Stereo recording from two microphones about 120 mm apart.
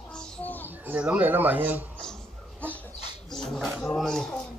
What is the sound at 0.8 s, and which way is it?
Speech, 10° right (ahead or behind).